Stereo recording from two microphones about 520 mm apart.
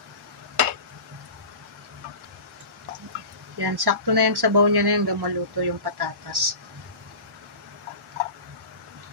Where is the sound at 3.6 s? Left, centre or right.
Right.